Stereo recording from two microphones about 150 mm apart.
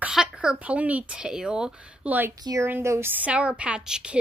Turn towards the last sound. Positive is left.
turn(degrees=-5)  # may be behind; listen again after turning